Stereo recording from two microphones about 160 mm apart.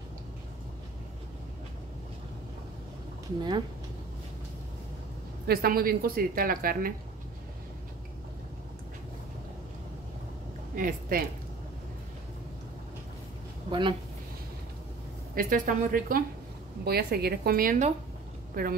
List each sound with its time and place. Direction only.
3.3 s speech: 25° right (ahead or behind)
5.5 s a woman's voice: 70° right (ahead or behind)
10.8 s a woman's voice: 65° right (ahead or behind)
13.7 s speech: 30° right (ahead or behind)
15.3 s a woman's voice: 55° right (ahead or behind)
16.8 s a woman's voice: 80° right; by 18.8 s 65° right (ahead or behind)